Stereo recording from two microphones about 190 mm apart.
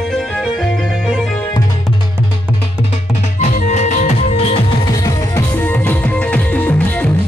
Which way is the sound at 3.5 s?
40° left (ahead or behind).